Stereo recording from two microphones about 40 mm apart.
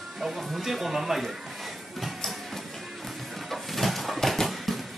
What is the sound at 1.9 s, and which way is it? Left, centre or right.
Printer, centre.